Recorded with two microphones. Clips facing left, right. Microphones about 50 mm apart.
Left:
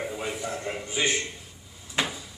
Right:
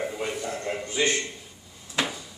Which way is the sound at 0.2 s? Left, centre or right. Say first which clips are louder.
Right 1 dB; centre.